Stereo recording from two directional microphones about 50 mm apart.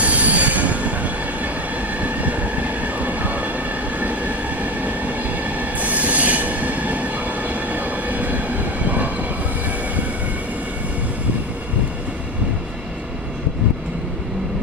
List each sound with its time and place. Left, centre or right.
0.0 s train wheels squealing: right
2.0 s train: right